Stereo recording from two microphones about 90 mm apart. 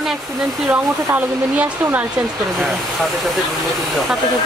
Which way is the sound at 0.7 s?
20° right (ahead or behind).